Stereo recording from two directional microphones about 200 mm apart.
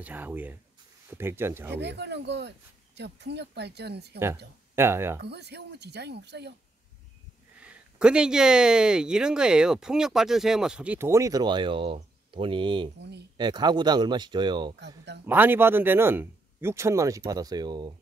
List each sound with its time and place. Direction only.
0.0 s speech: 10° right (ahead or behind)
1.8 s speech: 60° right (ahead or behind)
4.7 s speech: 10° right (ahead or behind)
5.2 s speech: 55° right (ahead or behind)
7.6 s speech: 5° right (ahead or behind); by 14.8 s 20° right (ahead or behind)
15.2 s speech: 10° right (ahead or behind)